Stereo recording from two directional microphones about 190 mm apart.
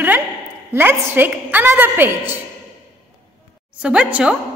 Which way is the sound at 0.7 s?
10° right (ahead or behind).